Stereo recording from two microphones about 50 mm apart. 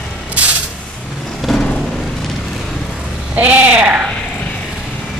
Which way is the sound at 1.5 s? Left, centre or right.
Centre.